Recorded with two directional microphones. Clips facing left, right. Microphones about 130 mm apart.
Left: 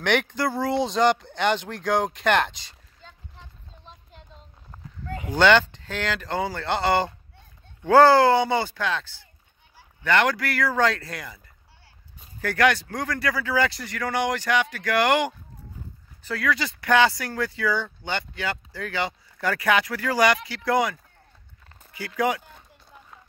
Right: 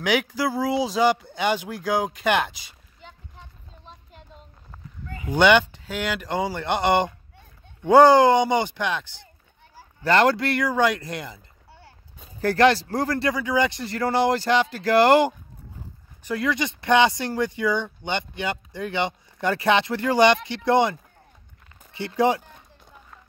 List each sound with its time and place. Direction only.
0.0 s speech: 5° right (ahead or behind)
3.8 s a sound: 5° right (ahead or behind)
5.3 s speech: 15° right (ahead or behind)
9.8 s speech: 35° right (ahead or behind)
10.7 s speech: 15° right (ahead or behind); by 15.3 s 30° right (ahead or behind)
16.2 s speech: 20° right (ahead or behind)